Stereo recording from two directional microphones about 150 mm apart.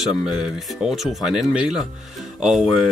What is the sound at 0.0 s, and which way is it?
Speech, centre (ahead or behind).